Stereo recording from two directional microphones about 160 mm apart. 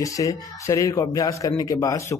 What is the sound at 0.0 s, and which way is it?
A man's voice, 20° left (ahead or behind).